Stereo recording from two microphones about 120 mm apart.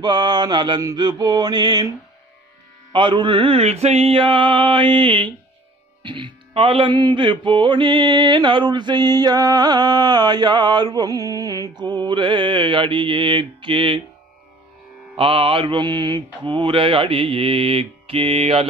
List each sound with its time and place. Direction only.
0.0 s mantra: 35° right (ahead or behind)
2.9 s mantra: 40° right (ahead or behind)
15.1 s mantra: 50° right (ahead or behind)